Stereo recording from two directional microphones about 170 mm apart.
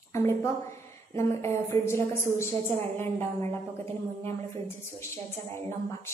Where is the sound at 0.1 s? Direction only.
15° left (ahead or behind).